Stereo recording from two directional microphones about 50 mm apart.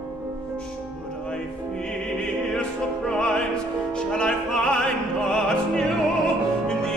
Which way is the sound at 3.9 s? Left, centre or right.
Centre.